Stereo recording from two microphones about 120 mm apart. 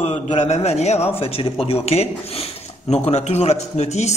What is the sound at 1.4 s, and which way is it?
A man's voice, 50° left (ahead or behind).